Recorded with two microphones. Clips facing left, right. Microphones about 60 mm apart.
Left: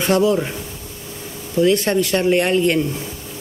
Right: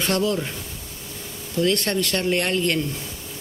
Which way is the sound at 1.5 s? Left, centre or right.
Centre.